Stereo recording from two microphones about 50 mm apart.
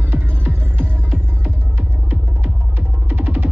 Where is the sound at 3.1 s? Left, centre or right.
Right.